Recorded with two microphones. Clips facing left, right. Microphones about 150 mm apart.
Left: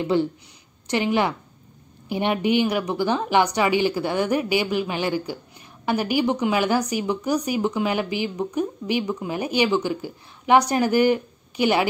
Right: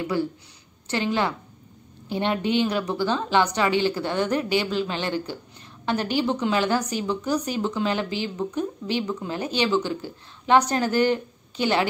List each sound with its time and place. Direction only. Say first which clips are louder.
0.0 s a woman's voice: left 4 dB; 25° left (ahead or behind)